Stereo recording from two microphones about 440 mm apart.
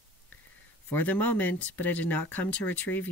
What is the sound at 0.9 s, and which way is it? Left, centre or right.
Speech, centre.